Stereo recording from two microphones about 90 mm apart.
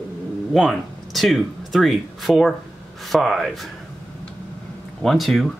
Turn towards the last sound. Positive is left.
turn(degrees=0)  # may be behind; listen again after turning